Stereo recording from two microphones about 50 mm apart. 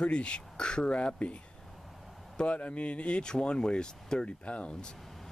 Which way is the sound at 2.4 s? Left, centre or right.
Left.